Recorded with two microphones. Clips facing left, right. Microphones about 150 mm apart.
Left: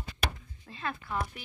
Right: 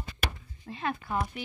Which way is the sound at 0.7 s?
35° right (ahead or behind).